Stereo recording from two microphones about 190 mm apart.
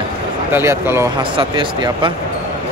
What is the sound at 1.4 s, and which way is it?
Speech, 25° right (ahead or behind).